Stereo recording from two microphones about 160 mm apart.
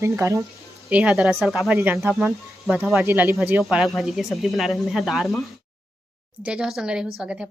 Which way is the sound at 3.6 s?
Centre (ahead or behind).